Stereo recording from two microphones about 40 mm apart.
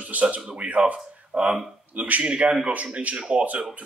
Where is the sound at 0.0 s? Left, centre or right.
Right.